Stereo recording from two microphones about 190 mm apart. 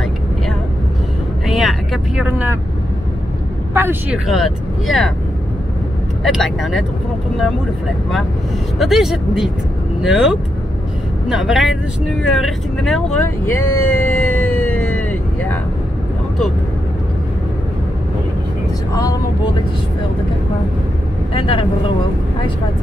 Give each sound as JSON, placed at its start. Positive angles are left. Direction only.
{"t": 1.5, "sound": "vehicle", "side_deg": 0}
{"t": 3.7, "sound": "speech", "side_deg": -10}
{"t": 4.3, "sound": "speech", "side_deg": 0}
{"t": 6.2, "sound": "speech", "side_deg": 0}
{"t": 8.7, "sound": "speech", "side_deg": 0}
{"t": 21.3, "sound": "speech", "side_deg": 30}